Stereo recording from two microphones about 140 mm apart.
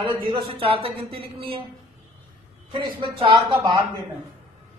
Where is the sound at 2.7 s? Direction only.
35° right (ahead or behind).